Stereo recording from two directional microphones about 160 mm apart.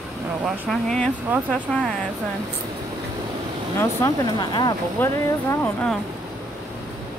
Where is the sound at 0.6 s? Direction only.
5° left (ahead or behind).